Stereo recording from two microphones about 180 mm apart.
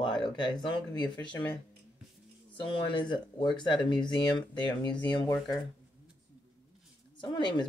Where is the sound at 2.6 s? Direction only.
25° left (ahead or behind).